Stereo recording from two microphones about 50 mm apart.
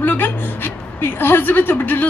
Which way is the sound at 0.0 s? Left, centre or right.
Left.